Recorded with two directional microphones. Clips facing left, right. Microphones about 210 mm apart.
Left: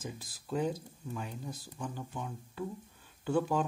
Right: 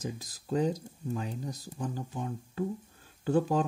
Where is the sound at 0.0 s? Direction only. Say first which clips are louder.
Right 5 dB; 40° right (ahead or behind).